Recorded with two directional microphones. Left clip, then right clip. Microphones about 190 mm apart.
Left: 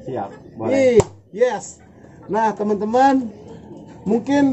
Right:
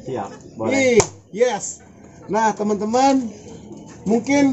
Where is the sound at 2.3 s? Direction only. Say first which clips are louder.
Even; 5° right (ahead or behind).